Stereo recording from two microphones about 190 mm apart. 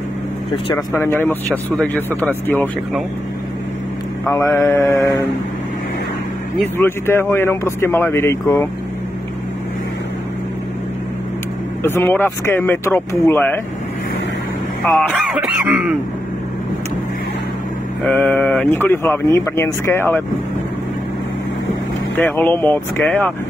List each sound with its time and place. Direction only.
0.9 s speech: 10° left (ahead or behind)
4.3 s speech: 15° left (ahead or behind)
6.6 s speech: 10° left (ahead or behind)
11.8 s speech: 10° left (ahead or behind)
14.9 s speech: 5° left (ahead or behind)
18.0 s speech: 5° left (ahead or behind)
22.2 s speech: 10° left (ahead or behind)